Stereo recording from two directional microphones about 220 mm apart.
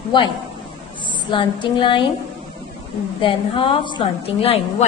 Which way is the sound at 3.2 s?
25° left (ahead or behind).